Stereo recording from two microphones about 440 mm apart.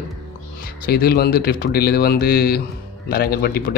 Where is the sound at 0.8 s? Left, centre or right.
Left.